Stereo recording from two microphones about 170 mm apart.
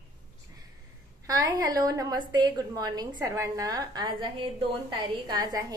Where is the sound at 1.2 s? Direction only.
20° right (ahead or behind).